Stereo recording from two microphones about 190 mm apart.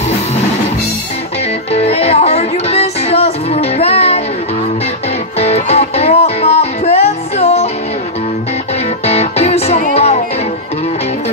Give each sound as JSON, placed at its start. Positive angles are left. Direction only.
{"t": 1.7, "sound": "music", "side_deg": 30}
{"t": 5.4, "sound": "music", "side_deg": 35}
{"t": 9.0, "sound": "music", "side_deg": 35}